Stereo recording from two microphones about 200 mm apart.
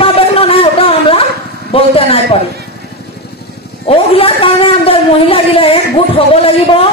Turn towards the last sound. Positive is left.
turn(degrees=25)  # may be behind; listen again after turning